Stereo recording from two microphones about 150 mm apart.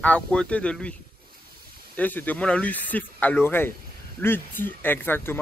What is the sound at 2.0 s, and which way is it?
Speech, 10° left (ahead or behind).